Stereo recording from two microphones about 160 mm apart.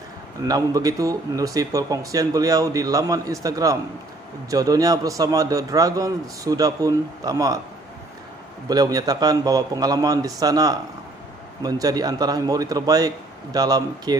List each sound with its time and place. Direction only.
0.4 s speech: 20° right (ahead or behind)
8.6 s speech: 25° right (ahead or behind)